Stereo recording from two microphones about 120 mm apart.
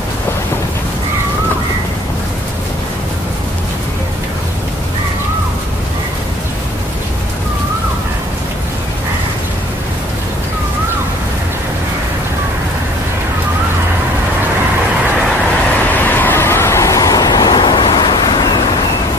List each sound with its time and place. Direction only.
15.9 s vehicle: 15° left (ahead or behind); by 18.6 s 35° left (ahead or behind)